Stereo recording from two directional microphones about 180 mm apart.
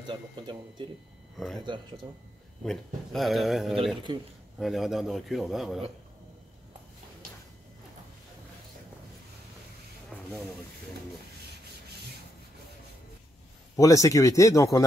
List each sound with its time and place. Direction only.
0.0 s speech: 25° right (ahead or behind)
2.6 s a man's voice: 5° left (ahead or behind)
4.1 s speech: 25° right (ahead or behind)
4.6 s a man's voice: centre (ahead or behind)
13.7 s speech: 20° left (ahead or behind)